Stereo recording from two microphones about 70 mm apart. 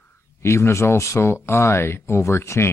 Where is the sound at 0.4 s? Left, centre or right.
Left.